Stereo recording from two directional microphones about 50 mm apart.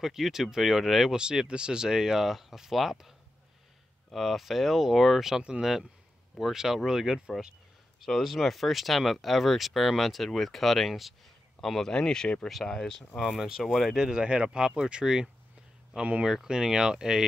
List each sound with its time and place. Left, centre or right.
0.0 s speech: centre
1.1 s speech: centre
11.6 s speech: centre; by 16.3 s right
16.3 s speech: centre